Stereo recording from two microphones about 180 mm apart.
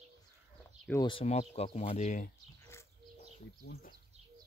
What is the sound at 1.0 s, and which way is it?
Speech, 35° left (ahead or behind).